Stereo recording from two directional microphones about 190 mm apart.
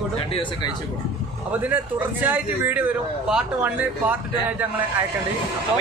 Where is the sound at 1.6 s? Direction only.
10° right (ahead or behind).